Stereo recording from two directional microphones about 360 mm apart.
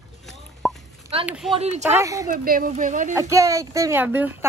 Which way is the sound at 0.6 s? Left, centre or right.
Centre.